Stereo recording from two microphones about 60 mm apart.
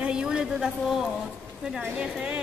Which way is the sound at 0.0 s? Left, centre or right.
Centre.